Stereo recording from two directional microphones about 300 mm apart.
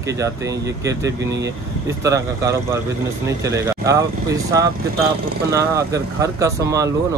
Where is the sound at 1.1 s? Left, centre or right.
Right.